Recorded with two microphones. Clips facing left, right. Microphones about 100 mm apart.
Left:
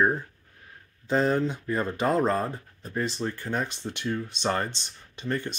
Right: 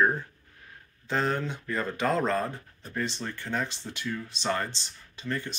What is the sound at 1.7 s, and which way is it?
Speech, 25° left (ahead or behind).